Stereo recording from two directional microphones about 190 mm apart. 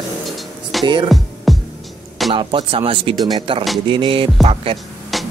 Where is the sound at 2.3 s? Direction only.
25° right (ahead or behind).